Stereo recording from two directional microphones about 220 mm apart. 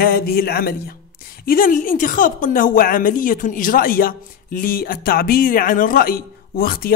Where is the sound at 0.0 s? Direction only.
40° left (ahead or behind).